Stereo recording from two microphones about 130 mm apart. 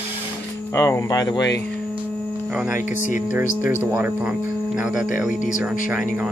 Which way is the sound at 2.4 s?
10° right (ahead or behind).